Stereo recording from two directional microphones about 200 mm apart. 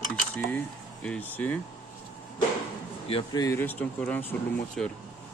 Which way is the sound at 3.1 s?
30° left (ahead or behind).